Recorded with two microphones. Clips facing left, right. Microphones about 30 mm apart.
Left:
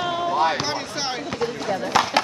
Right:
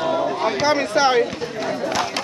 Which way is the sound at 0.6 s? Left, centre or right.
Centre.